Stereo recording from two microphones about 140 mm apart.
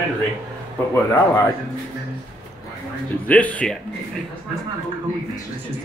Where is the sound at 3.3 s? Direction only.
10° left (ahead or behind).